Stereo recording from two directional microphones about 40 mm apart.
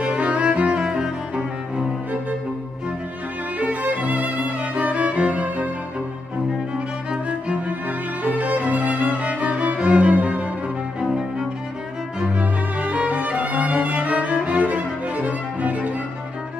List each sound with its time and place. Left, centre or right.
0.0 s music: right
0.8 s cello: centre
3.5 s music: right
7.1 s music: right
8.2 s music: right
11.1 s cello: centre
12.4 s music: right